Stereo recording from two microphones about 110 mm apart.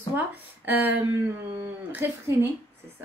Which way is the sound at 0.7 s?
15° right (ahead or behind).